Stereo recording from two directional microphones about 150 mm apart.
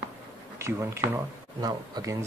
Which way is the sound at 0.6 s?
15° right (ahead or behind).